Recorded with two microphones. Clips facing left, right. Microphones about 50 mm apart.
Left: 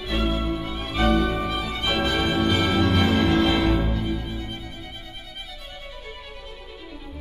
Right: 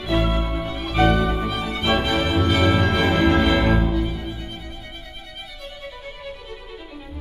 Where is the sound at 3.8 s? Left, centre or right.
Centre.